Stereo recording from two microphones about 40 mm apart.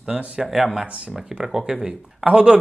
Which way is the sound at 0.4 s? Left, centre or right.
Centre.